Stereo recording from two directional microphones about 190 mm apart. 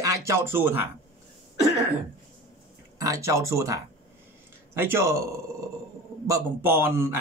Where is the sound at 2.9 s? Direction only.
15° right (ahead or behind).